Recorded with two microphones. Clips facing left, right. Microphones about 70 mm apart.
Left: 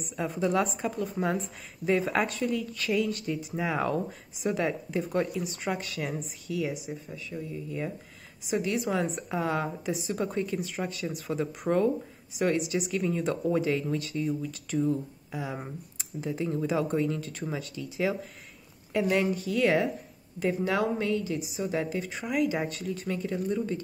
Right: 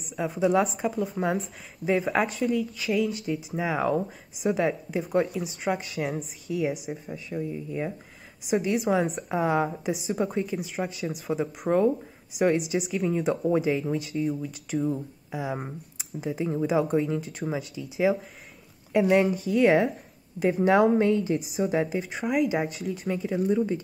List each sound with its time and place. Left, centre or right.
0.0 s speech: centre
6.5 s a woman's voice: right
12.7 s a woman's voice: centre; by 21.5 s right
21.7 s a woman's voice: centre
22.2 s a woman's voice: centre
23.5 s speech: centre